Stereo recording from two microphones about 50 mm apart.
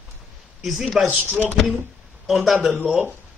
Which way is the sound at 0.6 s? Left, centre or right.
Centre.